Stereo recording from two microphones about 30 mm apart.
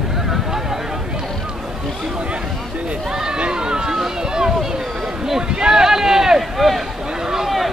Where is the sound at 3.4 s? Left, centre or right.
Right.